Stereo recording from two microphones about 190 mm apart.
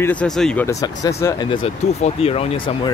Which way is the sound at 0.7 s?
15° left (ahead or behind).